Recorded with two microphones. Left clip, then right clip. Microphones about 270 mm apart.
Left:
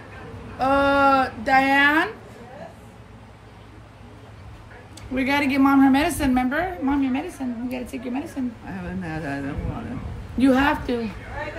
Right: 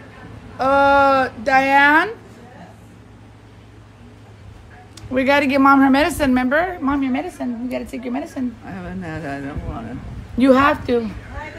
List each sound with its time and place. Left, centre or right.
0.6 s a sound: right
5.1 s a woman's voice: right
8.6 s a woman's voice: centre
10.4 s a woman's voice: right